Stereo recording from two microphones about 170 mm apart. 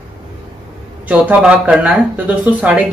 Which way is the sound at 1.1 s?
10° right (ahead or behind).